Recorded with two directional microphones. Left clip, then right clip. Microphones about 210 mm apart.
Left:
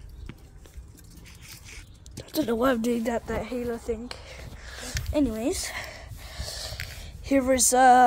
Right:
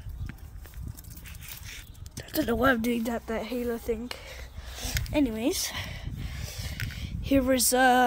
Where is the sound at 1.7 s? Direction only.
25° right (ahead or behind).